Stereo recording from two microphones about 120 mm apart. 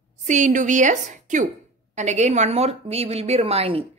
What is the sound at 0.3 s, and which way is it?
A woman's voice, 90° right.